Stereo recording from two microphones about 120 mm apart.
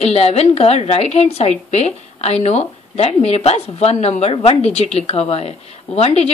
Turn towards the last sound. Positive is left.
turn(degrees=60)  # may be behind; listen again after turning